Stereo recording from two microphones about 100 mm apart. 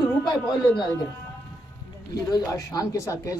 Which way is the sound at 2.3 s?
40° left (ahead or behind).